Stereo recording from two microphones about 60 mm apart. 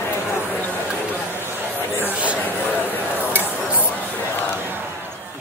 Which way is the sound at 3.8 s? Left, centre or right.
Left.